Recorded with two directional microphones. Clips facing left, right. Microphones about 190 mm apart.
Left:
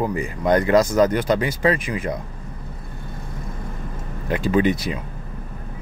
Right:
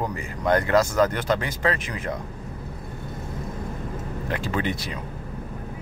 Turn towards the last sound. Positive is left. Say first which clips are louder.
# left 8 dB
turn(degrees=15)  # may be behind; listen again after turning